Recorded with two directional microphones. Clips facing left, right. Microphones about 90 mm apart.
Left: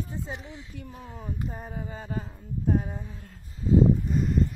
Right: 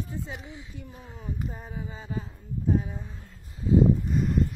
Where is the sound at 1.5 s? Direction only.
55° left (ahead or behind).